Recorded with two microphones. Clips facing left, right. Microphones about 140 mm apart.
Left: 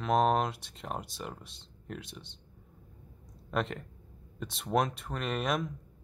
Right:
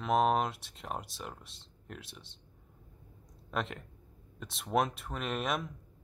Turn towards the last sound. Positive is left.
turn(degrees=0)  # may be behind; listen again after turning